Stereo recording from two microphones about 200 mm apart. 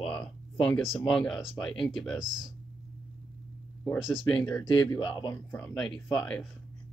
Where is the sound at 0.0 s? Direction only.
5° left (ahead or behind).